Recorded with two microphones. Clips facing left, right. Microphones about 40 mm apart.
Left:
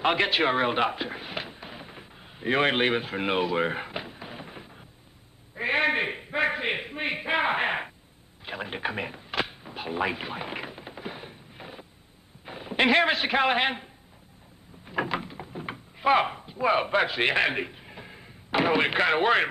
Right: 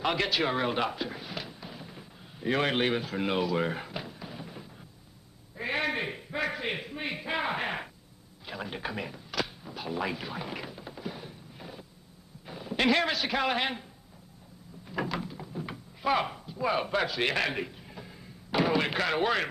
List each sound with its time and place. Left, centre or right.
0.0 s speech: left
5.6 s a sound: left
12.4 s a man's voice: left
14.9 s door: left